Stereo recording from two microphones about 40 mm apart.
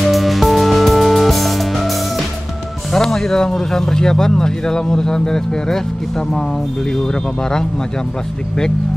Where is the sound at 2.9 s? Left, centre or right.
Centre.